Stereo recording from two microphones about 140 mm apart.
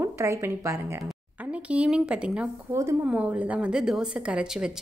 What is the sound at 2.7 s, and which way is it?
Speech, 20° right (ahead or behind).